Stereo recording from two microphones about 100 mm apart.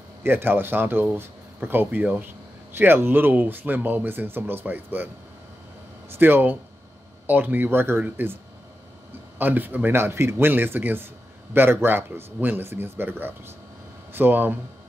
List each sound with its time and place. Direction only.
0.2 s speech: 20° right (ahead or behind)
9.4 s speech: 20° right (ahead or behind)